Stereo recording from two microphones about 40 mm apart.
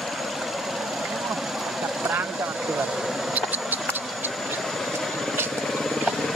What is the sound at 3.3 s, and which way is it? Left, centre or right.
Mouse, right.